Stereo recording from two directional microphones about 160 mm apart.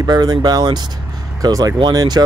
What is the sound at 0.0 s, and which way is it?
Speech, 25° right (ahead or behind).